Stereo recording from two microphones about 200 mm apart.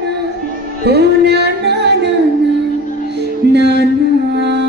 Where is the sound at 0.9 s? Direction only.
55° right (ahead or behind).